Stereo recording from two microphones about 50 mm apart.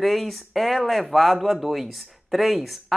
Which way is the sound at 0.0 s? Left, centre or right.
Centre.